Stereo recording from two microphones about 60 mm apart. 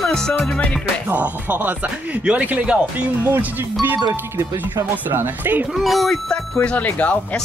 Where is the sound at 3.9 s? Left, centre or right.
Right.